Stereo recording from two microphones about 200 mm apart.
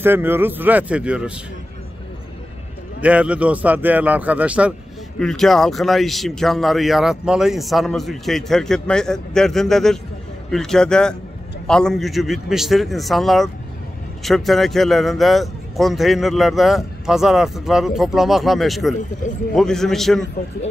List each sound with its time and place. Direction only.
0.0 s a man's voice: 10° right (ahead or behind)
3.0 s a man's voice: 5° right (ahead or behind)